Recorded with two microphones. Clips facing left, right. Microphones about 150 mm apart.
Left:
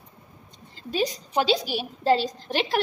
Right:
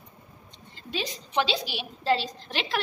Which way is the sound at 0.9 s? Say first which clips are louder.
Left 7 dB; 40° left (ahead or behind).